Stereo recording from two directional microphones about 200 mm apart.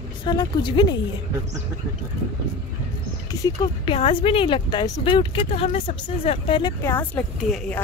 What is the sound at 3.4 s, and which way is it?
A woman's voice, 20° left (ahead or behind).